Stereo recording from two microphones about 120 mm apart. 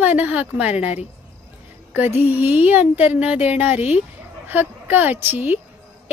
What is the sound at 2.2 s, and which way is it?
Speech, 15° right (ahead or behind).